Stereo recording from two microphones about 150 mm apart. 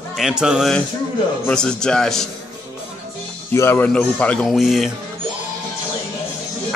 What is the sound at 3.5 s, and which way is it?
Speech, 15° left (ahead or behind).